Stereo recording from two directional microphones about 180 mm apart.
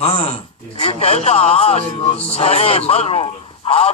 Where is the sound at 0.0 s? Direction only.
30° left (ahead or behind).